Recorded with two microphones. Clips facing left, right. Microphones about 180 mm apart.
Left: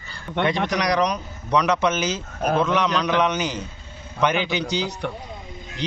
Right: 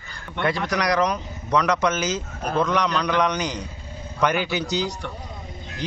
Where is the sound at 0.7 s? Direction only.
15° left (ahead or behind).